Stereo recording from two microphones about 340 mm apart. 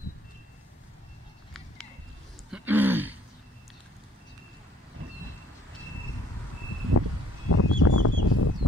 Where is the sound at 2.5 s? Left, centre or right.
Centre.